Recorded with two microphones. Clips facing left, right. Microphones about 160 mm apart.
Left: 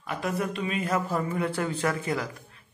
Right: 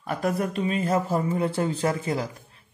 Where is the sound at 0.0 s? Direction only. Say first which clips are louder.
Right 4 dB; 40° right (ahead or behind).